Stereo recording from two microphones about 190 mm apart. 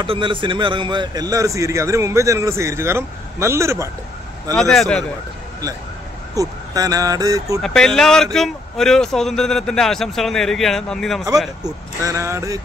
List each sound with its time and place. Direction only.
0.0 s a man's voice: 25° right (ahead or behind)
4.6 s speech: 5° left (ahead or behind)
6.3 s speech: 20° right (ahead or behind)
7.6 s speech: 5° left (ahead or behind)
11.6 s a man's voice: 15° right (ahead or behind)